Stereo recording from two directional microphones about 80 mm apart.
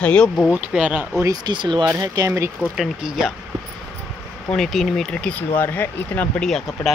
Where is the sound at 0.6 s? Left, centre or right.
Centre.